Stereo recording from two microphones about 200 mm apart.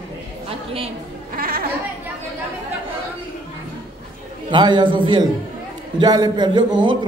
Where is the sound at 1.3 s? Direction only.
45° right (ahead or behind).